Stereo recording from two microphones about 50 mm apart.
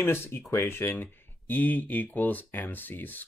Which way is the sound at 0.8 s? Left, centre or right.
Left.